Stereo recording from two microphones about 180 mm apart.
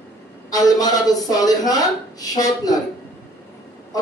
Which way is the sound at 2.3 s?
20° left (ahead or behind).